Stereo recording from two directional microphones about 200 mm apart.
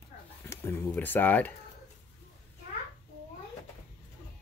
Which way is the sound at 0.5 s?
10° left (ahead or behind).